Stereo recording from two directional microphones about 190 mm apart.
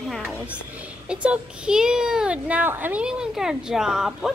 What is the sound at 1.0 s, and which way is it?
A child's voice, 5° right (ahead or behind).